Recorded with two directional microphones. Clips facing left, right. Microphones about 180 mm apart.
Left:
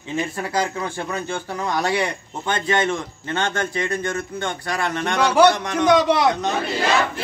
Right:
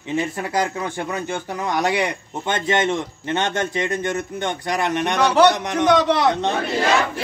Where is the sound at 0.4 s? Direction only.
20° right (ahead or behind).